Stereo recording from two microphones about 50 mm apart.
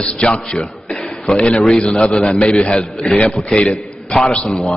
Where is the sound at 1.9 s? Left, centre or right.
Centre.